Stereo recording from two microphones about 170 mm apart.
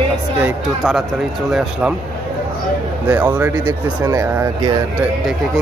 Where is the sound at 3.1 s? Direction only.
10° right (ahead or behind).